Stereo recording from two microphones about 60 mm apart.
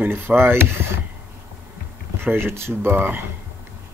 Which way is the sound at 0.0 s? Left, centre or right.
Right.